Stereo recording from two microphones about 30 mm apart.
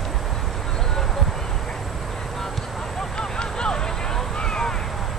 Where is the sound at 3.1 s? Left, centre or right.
Left.